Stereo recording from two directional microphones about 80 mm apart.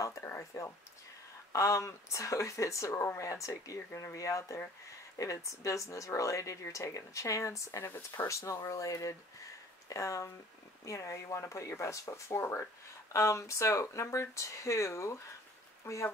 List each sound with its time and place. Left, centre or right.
0.0 s speech: left